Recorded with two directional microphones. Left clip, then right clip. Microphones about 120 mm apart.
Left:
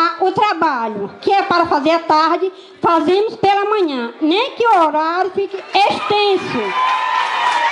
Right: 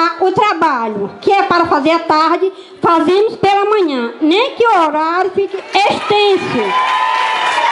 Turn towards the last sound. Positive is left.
turn(degrees=20)  # may be behind; listen again after turning